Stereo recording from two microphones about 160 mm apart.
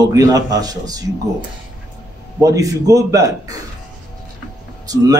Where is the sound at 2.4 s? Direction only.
20° right (ahead or behind).